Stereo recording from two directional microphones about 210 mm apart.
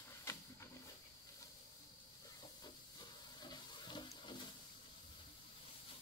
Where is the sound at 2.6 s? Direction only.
20° left (ahead or behind).